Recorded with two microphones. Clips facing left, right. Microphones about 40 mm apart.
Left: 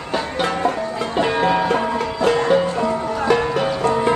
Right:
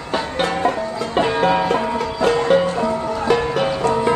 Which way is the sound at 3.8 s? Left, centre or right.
Centre.